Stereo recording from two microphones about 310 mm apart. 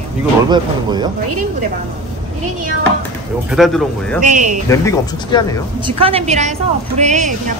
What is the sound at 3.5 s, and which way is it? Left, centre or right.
Speech, centre.